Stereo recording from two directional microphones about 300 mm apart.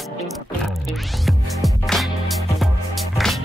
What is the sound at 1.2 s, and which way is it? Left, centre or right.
Music, centre.